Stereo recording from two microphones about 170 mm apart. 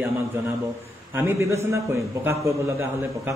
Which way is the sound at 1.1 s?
15° right (ahead or behind).